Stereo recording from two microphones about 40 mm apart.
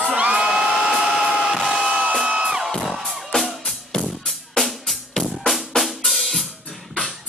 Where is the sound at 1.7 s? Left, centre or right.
Right.